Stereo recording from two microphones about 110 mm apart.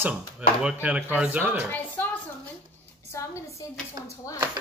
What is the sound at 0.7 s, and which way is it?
Speech, 10° right (ahead or behind).